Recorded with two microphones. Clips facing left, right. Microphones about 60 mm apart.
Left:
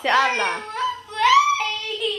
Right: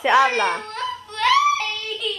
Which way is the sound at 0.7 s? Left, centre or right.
Centre.